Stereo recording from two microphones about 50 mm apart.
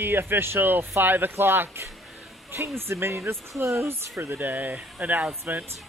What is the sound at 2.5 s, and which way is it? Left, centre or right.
Speech, right.